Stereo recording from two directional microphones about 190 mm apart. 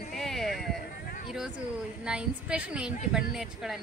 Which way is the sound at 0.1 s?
Centre (ahead or behind).